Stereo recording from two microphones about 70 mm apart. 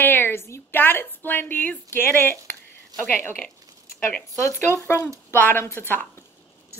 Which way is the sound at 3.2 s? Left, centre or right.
Left.